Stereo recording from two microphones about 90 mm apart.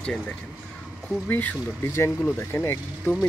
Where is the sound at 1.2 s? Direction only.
20° left (ahead or behind).